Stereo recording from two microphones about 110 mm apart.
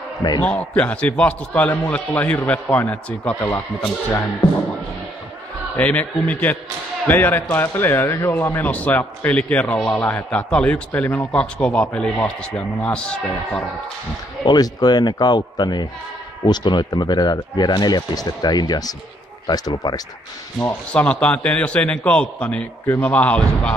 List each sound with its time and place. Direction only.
0.4 s a man's voice: 15° left (ahead or behind)
5.8 s a man's voice: 15° left (ahead or behind)
14.4 s speech: 40° left (ahead or behind)
20.9 s a man's voice: 10° left (ahead or behind)